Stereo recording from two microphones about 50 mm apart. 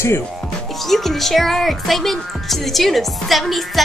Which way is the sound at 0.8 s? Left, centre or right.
Centre.